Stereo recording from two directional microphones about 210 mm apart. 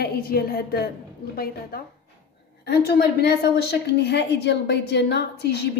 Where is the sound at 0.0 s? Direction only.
45° left (ahead or behind).